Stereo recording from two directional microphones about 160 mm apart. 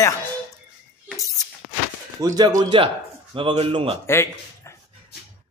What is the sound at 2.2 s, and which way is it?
Speech, 25° right (ahead or behind).